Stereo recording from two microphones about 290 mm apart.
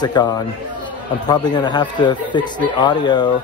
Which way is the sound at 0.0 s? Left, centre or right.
Centre.